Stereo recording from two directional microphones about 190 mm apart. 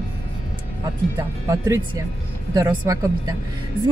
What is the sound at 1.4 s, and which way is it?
Speech, 15° right (ahead or behind).